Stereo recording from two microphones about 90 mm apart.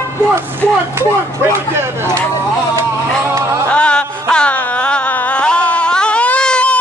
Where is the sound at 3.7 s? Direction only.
10° left (ahead or behind).